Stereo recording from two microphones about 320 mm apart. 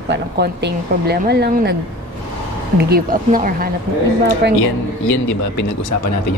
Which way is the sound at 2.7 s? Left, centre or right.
Right.